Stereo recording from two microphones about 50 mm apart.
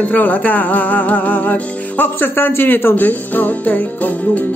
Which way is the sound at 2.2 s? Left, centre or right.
Left.